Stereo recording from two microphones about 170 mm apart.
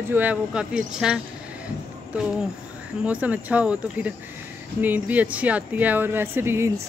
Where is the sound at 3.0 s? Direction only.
10° right (ahead or behind).